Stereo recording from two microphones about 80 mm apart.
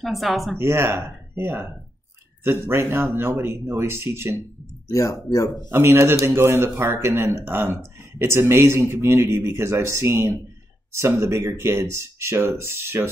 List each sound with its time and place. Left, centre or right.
0.0 s speech: centre
0.6 s speech: right
4.8 s speech: left
5.7 s speech: right